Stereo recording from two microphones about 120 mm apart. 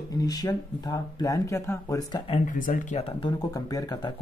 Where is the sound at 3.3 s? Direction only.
30° left (ahead or behind).